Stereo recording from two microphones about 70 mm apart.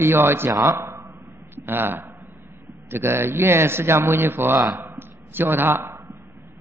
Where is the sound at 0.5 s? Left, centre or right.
Right.